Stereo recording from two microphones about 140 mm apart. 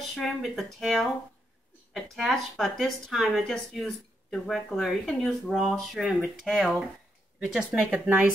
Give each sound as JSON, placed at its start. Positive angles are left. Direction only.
{"t": 0.1, "sound": "speech", "side_deg": 0}
{"t": 2.0, "sound": "speech", "side_deg": 0}